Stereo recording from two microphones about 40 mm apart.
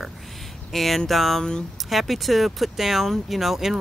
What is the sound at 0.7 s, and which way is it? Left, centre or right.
Speech, centre.